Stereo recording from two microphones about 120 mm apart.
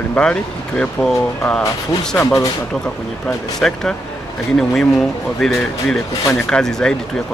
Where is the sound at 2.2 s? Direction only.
25° left (ahead or behind).